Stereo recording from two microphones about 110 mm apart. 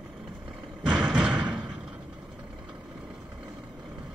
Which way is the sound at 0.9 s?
5° right (ahead or behind).